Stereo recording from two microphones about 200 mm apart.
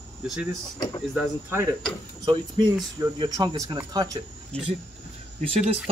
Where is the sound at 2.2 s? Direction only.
20° right (ahead or behind).